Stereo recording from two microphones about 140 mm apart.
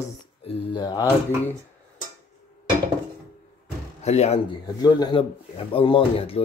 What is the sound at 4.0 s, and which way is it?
Speech, 50° left (ahead or behind).